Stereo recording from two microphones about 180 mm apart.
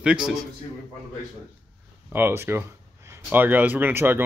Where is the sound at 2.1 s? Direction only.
15° right (ahead or behind).